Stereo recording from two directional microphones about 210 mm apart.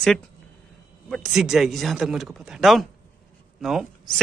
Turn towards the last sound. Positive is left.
turn(degrees=0)  # may be behind; listen again after turning